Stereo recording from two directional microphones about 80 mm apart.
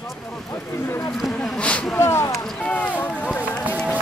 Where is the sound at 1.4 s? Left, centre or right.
Centre.